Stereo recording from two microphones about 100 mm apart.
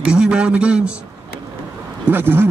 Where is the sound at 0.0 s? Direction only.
10° right (ahead or behind).